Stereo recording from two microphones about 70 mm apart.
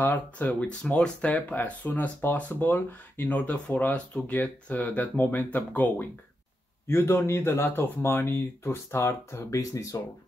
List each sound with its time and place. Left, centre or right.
0.0 s speech: left
1.9 s speech: left
6.9 s speech: left
9.5 s speech: left